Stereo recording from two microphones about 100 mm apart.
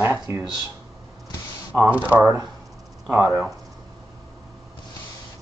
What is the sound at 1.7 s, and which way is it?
Speech, 15° right (ahead or behind).